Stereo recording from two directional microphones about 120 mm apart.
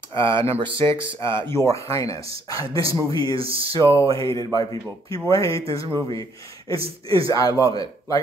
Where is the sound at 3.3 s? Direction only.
50° right (ahead or behind).